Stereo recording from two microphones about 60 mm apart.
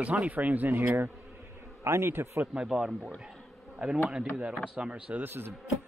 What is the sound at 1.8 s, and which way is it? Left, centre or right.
Speech, right.